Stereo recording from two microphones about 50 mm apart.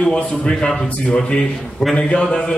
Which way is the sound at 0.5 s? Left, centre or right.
Centre.